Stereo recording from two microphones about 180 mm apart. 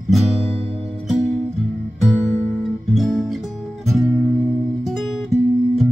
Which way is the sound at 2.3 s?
Centre (ahead or behind).